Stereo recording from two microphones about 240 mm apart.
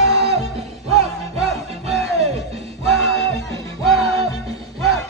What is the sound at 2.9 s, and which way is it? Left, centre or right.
Music, centre.